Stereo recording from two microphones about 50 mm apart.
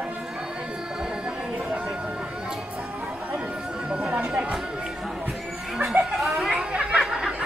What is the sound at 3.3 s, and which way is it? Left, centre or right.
Chatter, right.